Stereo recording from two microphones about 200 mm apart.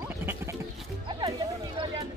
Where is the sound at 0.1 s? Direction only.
15° right (ahead or behind).